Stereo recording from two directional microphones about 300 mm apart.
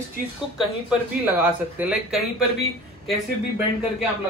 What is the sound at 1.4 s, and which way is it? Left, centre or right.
Speech, centre.